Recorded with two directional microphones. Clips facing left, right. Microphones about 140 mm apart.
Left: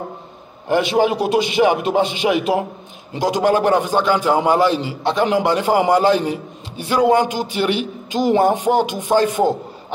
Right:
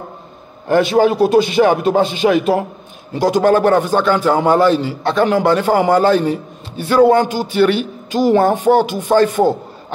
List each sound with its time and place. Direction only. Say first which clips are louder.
0.7 s a man's voice: right 4 dB; 15° left (ahead or behind)